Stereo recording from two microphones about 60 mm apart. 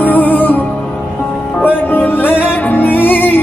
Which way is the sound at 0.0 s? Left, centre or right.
Left.